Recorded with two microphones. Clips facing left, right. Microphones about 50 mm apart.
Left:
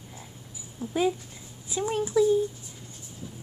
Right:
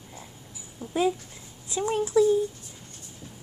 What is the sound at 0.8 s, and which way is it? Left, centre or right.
Dog, centre.